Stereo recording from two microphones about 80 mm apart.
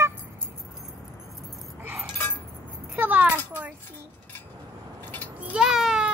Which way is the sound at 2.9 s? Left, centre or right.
Right.